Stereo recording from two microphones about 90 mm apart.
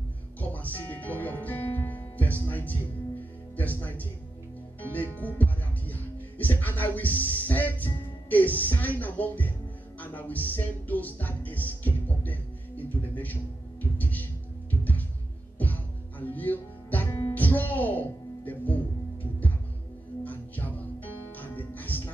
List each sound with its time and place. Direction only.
0.4 s music: 20° left (ahead or behind)
5.1 s music: 20° left (ahead or behind)
20.2 s music: 20° left (ahead or behind)